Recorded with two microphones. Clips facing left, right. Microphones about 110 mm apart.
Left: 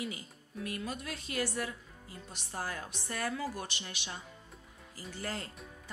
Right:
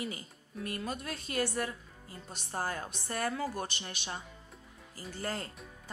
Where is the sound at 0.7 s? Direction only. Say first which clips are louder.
Right 2 dB; 40° right (ahead or behind).